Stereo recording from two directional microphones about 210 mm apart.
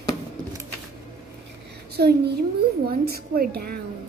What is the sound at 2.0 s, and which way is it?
A woman's voice, 50° right (ahead or behind).